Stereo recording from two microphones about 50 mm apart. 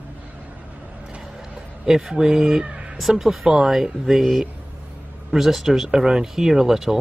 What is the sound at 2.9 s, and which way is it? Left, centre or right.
Speech, centre.